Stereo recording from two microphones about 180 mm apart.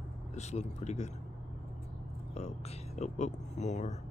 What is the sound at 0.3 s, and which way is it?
Speech, 40° left (ahead or behind).